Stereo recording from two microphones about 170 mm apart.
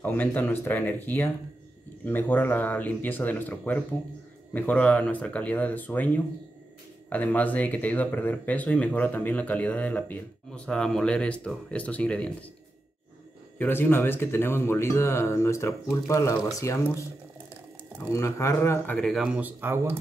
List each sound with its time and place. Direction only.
0.0 s speech: 10° left (ahead or behind)
13.6 s speech: 10° left (ahead or behind)
18.1 s speech: 15° left (ahead or behind); by 20.0 s 10° right (ahead or behind)